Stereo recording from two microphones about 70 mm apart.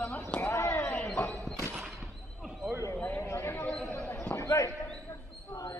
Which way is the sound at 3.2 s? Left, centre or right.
Left.